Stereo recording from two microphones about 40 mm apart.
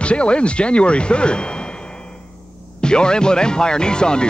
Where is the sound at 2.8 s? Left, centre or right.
Left.